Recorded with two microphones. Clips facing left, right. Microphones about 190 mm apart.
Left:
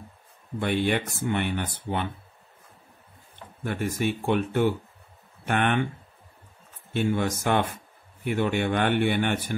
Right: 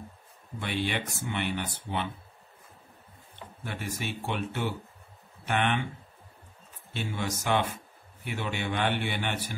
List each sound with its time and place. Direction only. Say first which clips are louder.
0.6 s speech: left 7 dB; 50° left (ahead or behind)
3.6 s speech: left 9 dB; 50° left (ahead or behind)
6.9 s speech: left 8 dB; 55° left (ahead or behind)